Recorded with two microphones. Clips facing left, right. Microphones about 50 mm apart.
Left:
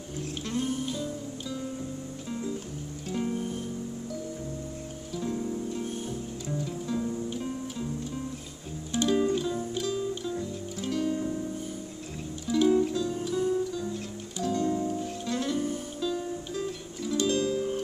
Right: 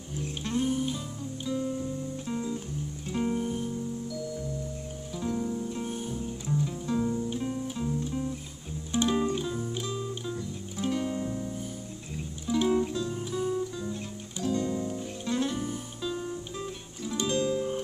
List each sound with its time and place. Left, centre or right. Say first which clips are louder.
0.2 s music: right 2 dB; centre
2.2 s music: left 1 dB; centre
5.2 s music: right 1 dB; centre
8.9 s music: left 1 dB; centre
12.4 s music: left 3 dB; centre
14.6 s music: left 3 dB; left
15.2 s music: even; centre